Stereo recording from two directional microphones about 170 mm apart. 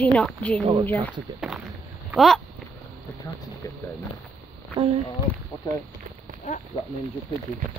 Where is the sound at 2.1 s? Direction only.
Centre (ahead or behind).